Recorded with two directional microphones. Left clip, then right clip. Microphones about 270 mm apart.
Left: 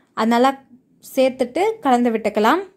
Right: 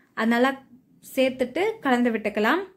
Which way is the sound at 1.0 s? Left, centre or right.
Centre.